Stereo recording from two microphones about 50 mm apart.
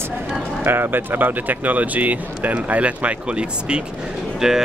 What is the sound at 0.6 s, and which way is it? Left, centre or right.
Speech, right.